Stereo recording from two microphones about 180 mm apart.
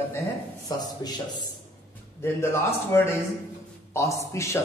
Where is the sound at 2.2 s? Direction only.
15° left (ahead or behind).